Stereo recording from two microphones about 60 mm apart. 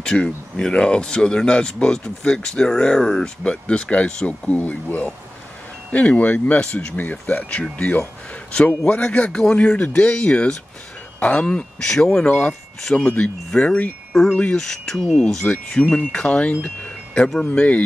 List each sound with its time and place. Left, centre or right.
0.0 s speech: centre
6.6 s speech: centre
14.6 s speech: centre; by 17.8 s left